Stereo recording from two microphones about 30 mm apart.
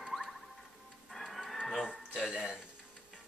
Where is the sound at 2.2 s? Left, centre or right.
Right.